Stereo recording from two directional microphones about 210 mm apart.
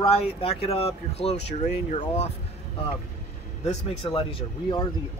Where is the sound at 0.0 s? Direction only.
25° left (ahead or behind).